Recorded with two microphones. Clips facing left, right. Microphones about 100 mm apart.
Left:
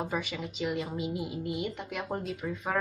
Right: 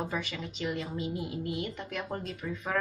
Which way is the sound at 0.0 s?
5° left (ahead or behind).